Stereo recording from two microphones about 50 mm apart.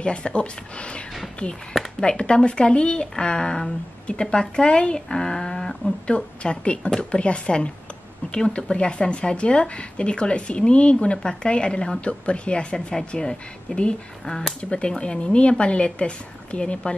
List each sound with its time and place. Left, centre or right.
0.0 s speech: centre
1.7 s speech: centre